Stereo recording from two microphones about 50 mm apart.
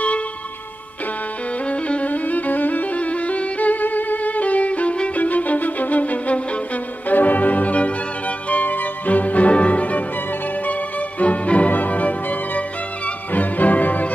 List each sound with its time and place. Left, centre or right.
1.7 s music: left